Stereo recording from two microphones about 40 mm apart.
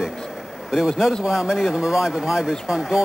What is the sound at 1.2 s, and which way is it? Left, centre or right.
Speech, centre.